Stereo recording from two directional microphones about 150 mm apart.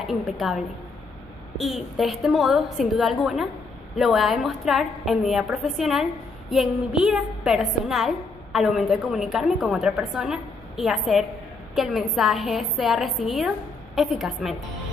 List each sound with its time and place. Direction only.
0.0 s a woman's voice: centre (ahead or behind)
1.6 s a woman's voice: centre (ahead or behind)